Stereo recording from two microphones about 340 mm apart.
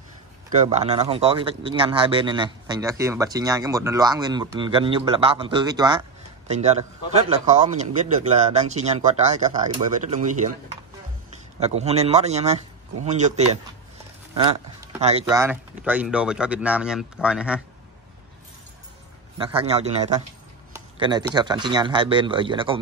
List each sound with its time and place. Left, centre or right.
0.5 s speech: centre
11.6 s speech: centre
19.3 s speech: centre